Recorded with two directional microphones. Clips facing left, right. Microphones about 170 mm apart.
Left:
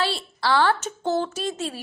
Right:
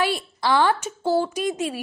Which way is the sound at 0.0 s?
15° right (ahead or behind).